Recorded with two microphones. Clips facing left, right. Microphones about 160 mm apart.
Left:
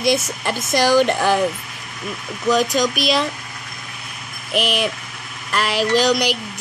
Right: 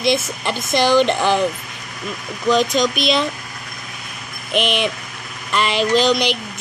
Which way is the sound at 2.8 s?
5° left (ahead or behind).